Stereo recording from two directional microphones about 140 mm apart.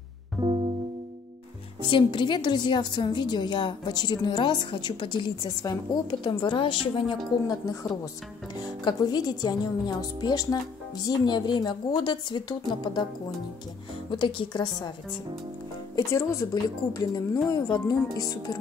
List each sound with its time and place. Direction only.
0.4 s music: 35° right (ahead or behind)
1.9 s a woman's voice: 35° left (ahead or behind)
14.1 s a woman's voice: 35° left (ahead or behind)
16.1 s speech: 20° left (ahead or behind)